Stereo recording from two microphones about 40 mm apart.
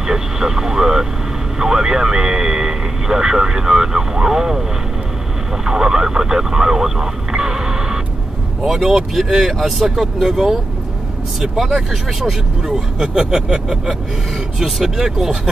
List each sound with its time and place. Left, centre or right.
0.0 s speech: centre
5.7 s speech: centre
8.6 s speech: centre
13.0 s speech: centre
14.6 s speech: centre